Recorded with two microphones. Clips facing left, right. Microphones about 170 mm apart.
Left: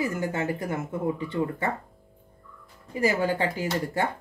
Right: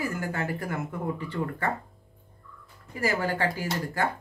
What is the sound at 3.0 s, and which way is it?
Speech, 20° left (ahead or behind).